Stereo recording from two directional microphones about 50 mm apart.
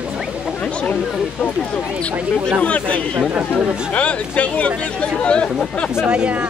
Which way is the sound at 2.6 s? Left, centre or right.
Left.